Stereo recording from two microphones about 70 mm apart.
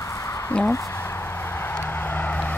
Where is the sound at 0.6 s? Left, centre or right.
Left.